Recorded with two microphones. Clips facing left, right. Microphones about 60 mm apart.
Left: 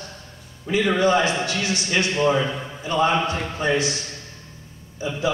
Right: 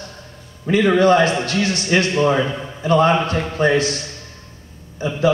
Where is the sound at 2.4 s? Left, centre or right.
Centre.